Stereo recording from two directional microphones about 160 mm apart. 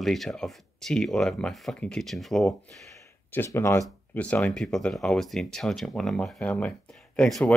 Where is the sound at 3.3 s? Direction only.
15° left (ahead or behind).